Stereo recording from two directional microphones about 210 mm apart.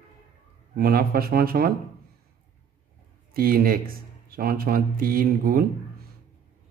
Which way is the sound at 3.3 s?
45° right (ahead or behind).